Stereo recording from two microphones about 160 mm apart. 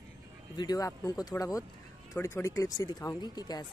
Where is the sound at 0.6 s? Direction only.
25° left (ahead or behind).